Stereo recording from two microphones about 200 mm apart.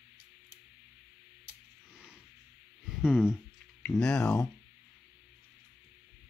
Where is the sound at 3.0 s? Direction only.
5° right (ahead or behind).